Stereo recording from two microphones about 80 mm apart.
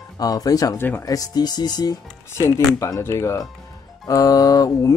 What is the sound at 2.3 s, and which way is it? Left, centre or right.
Speech, left.